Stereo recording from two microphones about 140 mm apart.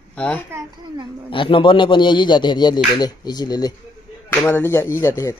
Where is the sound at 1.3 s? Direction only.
40° left (ahead or behind).